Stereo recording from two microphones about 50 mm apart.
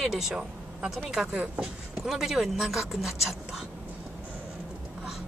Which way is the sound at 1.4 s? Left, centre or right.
Right.